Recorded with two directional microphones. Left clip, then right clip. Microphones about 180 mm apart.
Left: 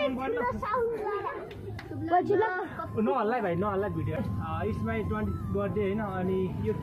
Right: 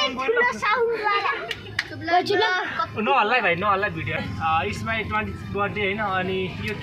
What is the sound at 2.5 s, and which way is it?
A man's voice, centre (ahead or behind).